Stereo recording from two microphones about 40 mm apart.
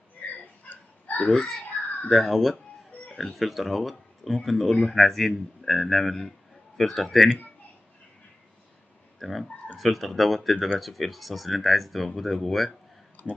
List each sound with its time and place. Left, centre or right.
0.7 s a sound: left
1.4 s speech: centre
9.2 s speech: centre
13.2 s speech: left